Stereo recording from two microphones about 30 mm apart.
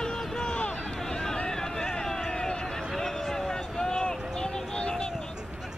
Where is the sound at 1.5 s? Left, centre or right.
Centre.